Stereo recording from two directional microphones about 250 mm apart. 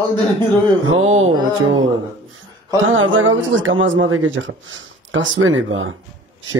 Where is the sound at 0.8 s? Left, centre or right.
Right.